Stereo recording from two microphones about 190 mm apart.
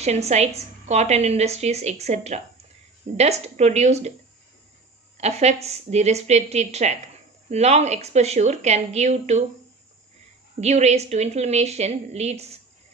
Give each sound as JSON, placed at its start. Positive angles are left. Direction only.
{"t": 0.0, "sound": "speech", "side_deg": -35}
{"t": 5.1, "sound": "speech", "side_deg": -35}
{"t": 10.6, "sound": "speech", "side_deg": -35}